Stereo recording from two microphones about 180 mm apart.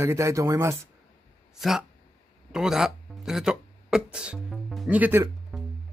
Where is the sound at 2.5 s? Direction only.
Centre (ahead or behind).